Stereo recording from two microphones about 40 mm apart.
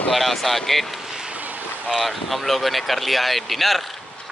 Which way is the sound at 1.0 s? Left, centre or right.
Centre.